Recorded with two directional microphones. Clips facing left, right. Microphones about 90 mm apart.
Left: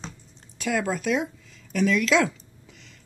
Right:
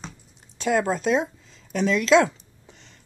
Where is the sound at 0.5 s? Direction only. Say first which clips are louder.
Right 4 dB; 30° right (ahead or behind).